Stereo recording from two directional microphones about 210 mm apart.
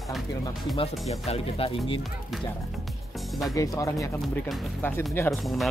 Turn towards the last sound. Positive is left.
turn(degrees=0)  # may be behind; listen again after turning